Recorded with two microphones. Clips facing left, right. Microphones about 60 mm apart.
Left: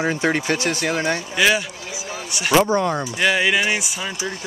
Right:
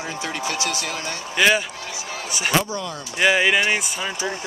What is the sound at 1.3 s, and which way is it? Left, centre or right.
Speech, centre.